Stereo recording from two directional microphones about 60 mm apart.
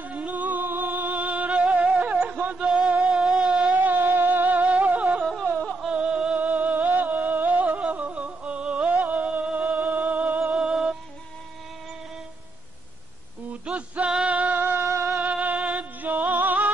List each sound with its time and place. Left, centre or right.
0.0 s music: right
2.5 s music: centre
3.0 s a sound: centre
3.7 s music: right
5.6 s music: centre
5.9 s music: centre
10.4 s music: centre
13.5 s a sound: right
14.3 s music: right
14.8 s music: right
15.1 s music: right